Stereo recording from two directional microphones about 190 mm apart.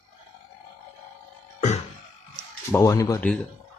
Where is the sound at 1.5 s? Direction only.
40° left (ahead or behind).